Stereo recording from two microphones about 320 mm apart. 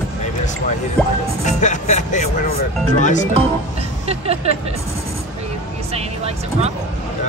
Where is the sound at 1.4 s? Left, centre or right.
Left.